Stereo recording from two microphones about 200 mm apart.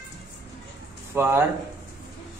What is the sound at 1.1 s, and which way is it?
Speech, 10° right (ahead or behind).